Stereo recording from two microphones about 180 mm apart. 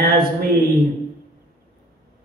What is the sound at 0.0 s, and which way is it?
Speech, 60° right (ahead or behind).